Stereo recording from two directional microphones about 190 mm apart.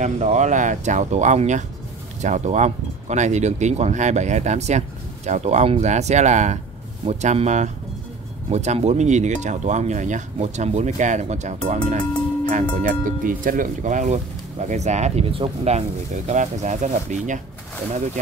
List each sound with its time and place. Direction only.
0.0 s speech: 40° right (ahead or behind)